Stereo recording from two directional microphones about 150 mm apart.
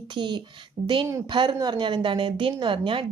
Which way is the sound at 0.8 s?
80° right.